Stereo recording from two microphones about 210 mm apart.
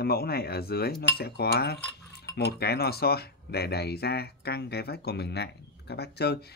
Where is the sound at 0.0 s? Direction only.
45° left (ahead or behind).